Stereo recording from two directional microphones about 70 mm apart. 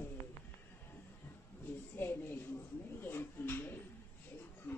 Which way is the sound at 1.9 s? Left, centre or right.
Left.